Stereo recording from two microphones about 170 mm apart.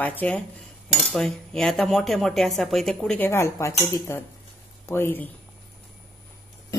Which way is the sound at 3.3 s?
15° left (ahead or behind).